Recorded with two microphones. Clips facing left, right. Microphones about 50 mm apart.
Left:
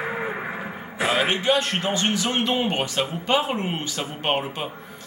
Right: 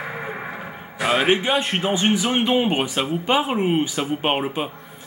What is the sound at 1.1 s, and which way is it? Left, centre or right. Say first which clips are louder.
Speech: right 3 dB; centre.